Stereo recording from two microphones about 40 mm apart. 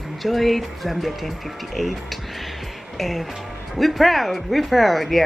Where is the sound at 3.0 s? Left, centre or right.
Centre.